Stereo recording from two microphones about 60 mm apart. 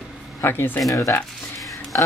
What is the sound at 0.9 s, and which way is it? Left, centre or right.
Speech, left.